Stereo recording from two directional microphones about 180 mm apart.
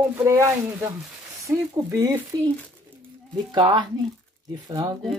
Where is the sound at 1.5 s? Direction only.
20° right (ahead or behind).